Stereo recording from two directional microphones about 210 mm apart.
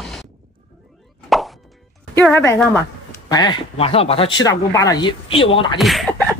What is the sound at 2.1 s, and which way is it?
Speech, 10° left (ahead or behind).